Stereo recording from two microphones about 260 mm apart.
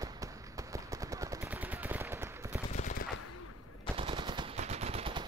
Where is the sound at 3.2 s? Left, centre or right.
Left.